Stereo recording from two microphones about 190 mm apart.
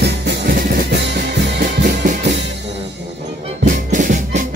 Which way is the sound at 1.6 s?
45° right (ahead or behind).